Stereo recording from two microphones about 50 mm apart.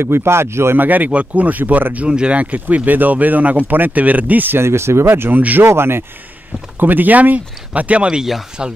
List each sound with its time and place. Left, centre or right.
0.0 s speech: right
0.7 s speech: right
2.0 s speech: centre; by 4.6 s right
4.6 s speech: right
5.1 s speech: right
6.8 s speech: right
8.1 s speech: centre